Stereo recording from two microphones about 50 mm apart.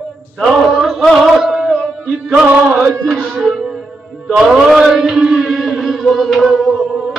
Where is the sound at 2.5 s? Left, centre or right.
Right.